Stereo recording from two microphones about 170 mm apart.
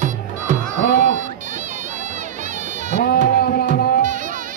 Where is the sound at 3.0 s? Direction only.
60° left (ahead or behind).